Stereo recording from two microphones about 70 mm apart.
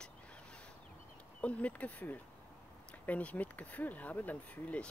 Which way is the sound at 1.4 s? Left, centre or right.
Left.